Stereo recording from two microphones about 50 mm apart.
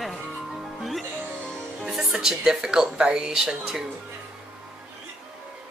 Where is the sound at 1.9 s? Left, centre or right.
Centre.